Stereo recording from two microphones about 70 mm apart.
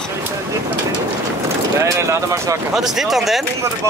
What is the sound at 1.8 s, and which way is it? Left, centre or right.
Speech, right.